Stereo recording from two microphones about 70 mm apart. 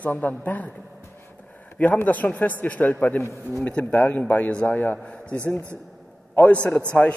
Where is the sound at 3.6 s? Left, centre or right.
Left.